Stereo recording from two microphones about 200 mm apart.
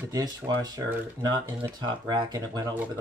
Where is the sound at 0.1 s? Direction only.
20° right (ahead or behind).